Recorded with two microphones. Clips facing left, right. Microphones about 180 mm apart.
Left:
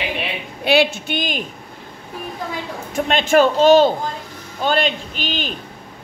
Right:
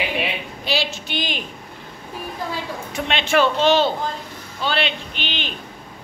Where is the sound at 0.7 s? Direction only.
55° left (ahead or behind).